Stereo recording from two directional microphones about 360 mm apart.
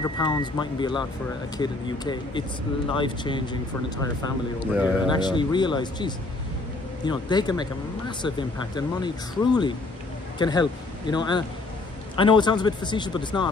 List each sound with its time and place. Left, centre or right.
0.0 s speech: centre
4.7 s speech: centre
5.2 s speech: centre